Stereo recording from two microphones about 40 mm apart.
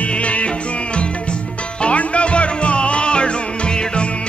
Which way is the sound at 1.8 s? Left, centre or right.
Left.